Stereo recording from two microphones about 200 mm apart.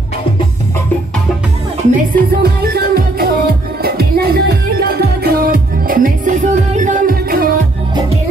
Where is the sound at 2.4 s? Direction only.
50° right (ahead or behind).